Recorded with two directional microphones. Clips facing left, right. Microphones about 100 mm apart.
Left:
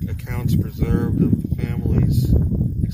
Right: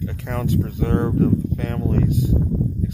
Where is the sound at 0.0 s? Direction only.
55° right (ahead or behind).